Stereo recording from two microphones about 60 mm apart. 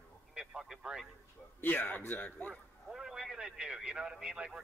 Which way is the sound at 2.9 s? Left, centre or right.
Centre.